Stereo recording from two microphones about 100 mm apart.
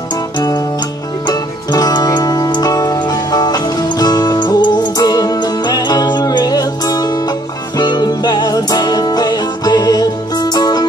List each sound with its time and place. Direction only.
1.2 s music: 45° left (ahead or behind)